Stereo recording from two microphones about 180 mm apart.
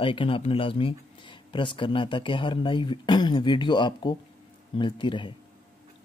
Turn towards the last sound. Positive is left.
turn(degrees=25)  # may be behind; listen again after turning